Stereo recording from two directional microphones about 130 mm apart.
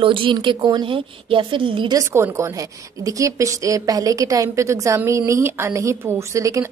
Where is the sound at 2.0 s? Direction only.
20° right (ahead or behind).